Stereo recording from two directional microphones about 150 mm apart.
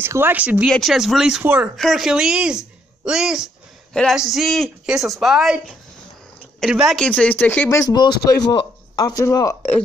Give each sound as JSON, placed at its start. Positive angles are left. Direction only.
{"t": 0.0, "sound": "speech", "side_deg": -15}
{"t": 1.8, "sound": "speech", "side_deg": 0}
{"t": 7.1, "sound": "speech", "side_deg": 10}